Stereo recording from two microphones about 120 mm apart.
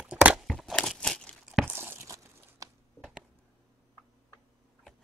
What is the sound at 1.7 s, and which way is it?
Crunch, 20° right (ahead or behind).